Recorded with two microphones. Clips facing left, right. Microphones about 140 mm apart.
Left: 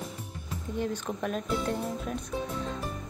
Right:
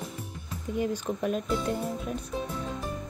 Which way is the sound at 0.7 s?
5° right (ahead or behind).